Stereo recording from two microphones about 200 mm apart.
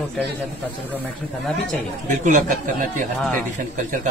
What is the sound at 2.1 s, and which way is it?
Speech, 40° right (ahead or behind).